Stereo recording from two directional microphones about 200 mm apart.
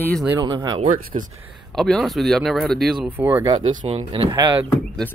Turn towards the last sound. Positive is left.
turn(degrees=-20)  # may be behind; listen again after turning